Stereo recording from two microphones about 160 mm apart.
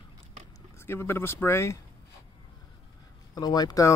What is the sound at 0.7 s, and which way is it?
Speech, 15° left (ahead or behind).